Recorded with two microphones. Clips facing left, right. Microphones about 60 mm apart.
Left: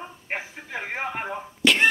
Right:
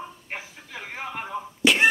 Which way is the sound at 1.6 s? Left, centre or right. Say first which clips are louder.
Even; centre.